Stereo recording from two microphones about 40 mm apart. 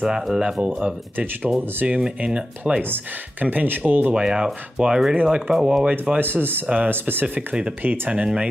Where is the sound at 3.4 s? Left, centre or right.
Right.